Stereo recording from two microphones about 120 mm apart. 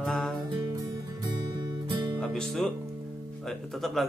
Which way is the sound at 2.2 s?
5° left (ahead or behind).